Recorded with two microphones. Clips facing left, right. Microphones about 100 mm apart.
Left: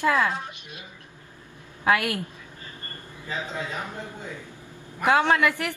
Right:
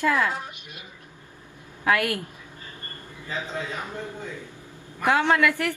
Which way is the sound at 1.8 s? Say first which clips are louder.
Even; 15° left (ahead or behind).